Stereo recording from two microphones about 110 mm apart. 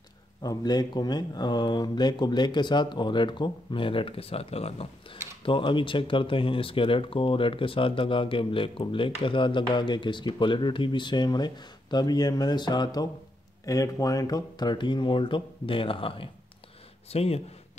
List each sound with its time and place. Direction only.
0.4 s speech: 35° left (ahead or behind); by 5.2 s 65° left (ahead or behind)
5.4 s speech: 50° left (ahead or behind)
17.1 s speech: 65° left (ahead or behind)